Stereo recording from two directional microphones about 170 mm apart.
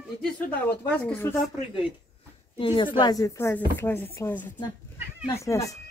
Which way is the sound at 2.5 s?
30° left (ahead or behind).